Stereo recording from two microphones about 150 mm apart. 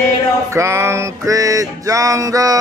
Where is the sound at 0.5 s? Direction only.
20° right (ahead or behind).